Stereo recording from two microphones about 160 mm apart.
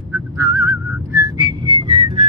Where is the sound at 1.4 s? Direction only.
30° right (ahead or behind).